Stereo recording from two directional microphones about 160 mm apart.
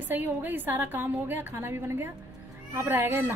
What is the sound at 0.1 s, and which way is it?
A woman's voice, 10° right (ahead or behind).